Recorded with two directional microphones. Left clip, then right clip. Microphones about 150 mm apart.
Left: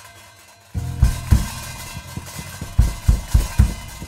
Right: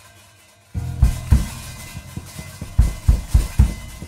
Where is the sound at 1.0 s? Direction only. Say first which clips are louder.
Left 1 dB; 45° left (ahead or behind).